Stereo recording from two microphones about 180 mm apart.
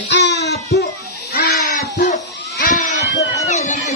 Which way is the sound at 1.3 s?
60° left (ahead or behind).